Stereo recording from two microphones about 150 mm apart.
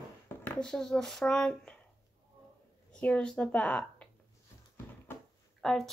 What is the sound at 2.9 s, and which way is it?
A woman's voice, 5° left (ahead or behind).